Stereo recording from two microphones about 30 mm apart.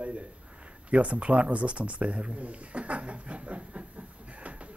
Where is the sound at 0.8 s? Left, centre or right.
Right.